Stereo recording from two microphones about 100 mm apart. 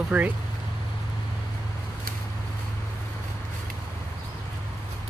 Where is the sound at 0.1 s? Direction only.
15° right (ahead or behind).